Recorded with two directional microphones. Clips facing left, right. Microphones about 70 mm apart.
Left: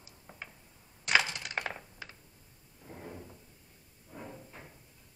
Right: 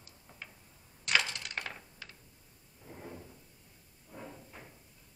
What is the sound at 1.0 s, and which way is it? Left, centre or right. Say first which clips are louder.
Coin: left 3 dB; centre.